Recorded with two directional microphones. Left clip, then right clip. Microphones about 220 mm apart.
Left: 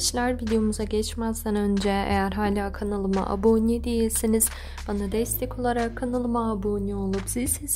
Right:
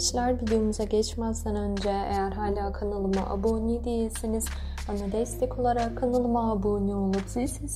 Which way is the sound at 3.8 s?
25° left (ahead or behind).